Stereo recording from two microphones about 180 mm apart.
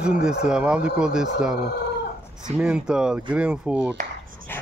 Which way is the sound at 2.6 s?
5° right (ahead or behind).